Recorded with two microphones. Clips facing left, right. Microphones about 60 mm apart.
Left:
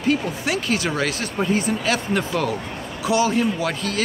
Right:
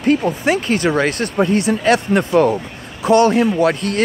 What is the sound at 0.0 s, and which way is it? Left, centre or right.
Speech, right.